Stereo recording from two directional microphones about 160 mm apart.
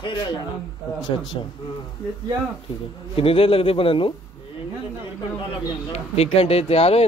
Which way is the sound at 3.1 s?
35° left (ahead or behind).